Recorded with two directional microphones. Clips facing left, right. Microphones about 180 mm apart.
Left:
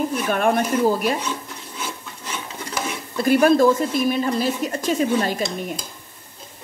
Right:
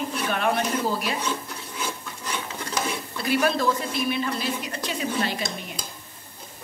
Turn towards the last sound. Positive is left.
turn(degrees=45)  # may be behind; listen again after turning